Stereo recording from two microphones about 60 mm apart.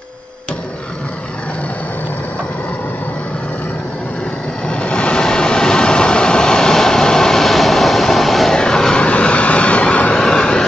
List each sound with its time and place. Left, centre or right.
4.6 s vehicle: centre